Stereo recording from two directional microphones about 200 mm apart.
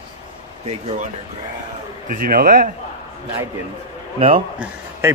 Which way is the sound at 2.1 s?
45° right (ahead or behind).